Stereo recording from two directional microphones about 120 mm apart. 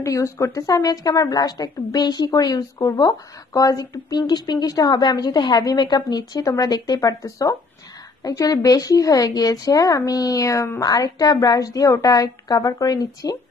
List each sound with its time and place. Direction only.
0.0 s a woman's voice: 25° left (ahead or behind)